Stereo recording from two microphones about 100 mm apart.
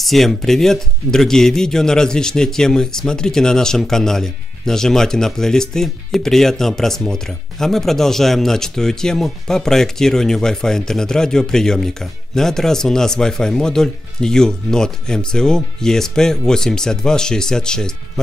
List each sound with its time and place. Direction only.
0.0 s speech: centre (ahead or behind)